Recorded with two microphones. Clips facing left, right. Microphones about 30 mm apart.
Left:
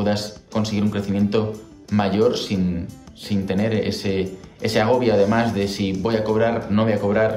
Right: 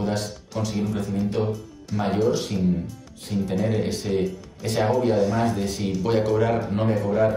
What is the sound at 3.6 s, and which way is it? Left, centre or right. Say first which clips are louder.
Speech: left 3 dB; left.